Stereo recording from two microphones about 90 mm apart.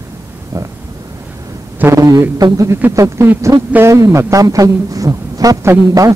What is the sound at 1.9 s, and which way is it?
A man's voice, 40° right (ahead or behind).